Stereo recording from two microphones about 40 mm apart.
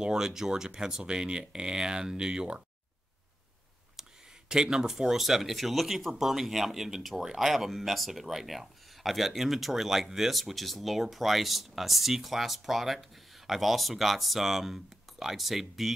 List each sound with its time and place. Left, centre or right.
0.0 s speech: centre
4.0 s a sound: centre
4.5 s speech: centre